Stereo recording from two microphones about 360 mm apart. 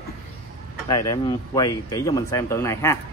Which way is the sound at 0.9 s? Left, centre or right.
Centre.